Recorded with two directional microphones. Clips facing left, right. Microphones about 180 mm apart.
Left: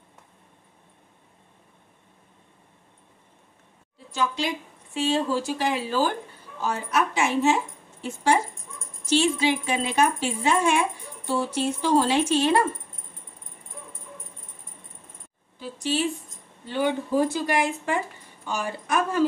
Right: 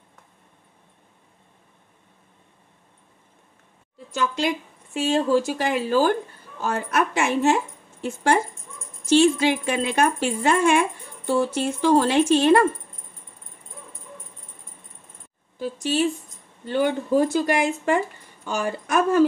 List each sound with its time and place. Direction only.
4.9 s speech: 45° right (ahead or behind)
15.6 s speech: 45° right (ahead or behind)